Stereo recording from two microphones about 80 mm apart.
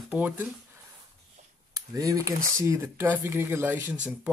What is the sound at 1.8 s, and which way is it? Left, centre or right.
Speech, right.